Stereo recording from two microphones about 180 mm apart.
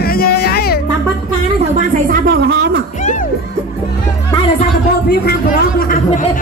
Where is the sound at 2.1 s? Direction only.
60° right (ahead or behind).